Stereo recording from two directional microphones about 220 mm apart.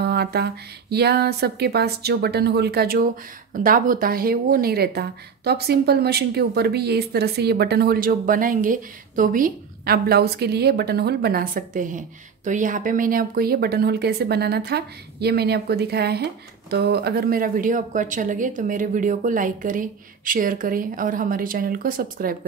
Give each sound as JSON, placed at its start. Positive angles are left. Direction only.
{"t": 0.0, "sound": "speech", "side_deg": -45}